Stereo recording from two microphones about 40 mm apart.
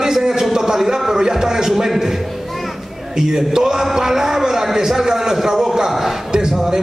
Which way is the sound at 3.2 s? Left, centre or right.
Centre.